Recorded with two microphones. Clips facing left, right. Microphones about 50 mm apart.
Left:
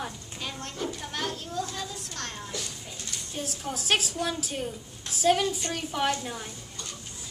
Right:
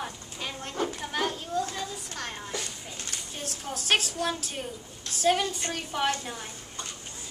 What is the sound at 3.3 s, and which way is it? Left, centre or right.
A woman's voice, centre.